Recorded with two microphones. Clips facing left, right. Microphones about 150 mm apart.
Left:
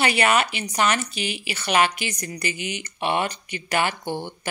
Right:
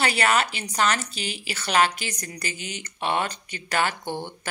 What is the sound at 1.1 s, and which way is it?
Speech, 40° right (ahead or behind).